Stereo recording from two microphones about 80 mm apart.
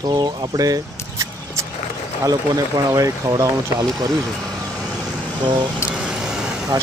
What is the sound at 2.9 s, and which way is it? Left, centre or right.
Speech, right.